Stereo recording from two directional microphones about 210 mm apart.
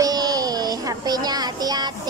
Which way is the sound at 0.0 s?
20° right (ahead or behind).